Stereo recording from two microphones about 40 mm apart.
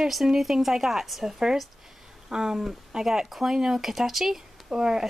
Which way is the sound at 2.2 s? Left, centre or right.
Centre.